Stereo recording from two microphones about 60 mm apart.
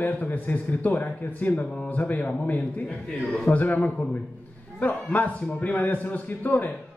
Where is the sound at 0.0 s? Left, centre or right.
Left.